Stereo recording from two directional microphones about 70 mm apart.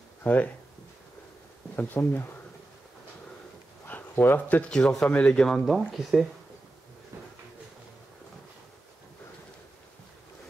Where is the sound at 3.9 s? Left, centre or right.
Left.